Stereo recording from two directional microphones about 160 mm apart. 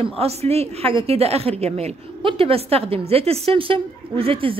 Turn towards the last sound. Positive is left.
turn(degrees=-35)  # may be behind; listen again after turning